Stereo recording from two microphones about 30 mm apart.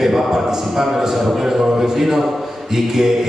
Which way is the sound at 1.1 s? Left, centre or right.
Centre.